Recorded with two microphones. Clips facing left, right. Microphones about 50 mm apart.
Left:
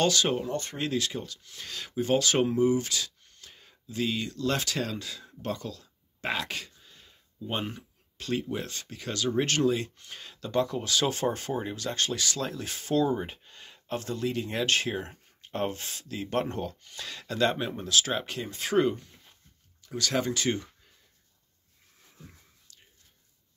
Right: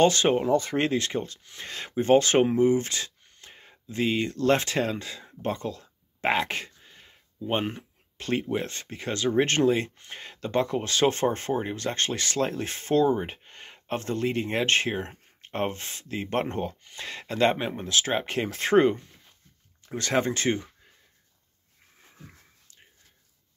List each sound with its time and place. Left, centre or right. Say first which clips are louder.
0.0 s speech: right 5 dB; right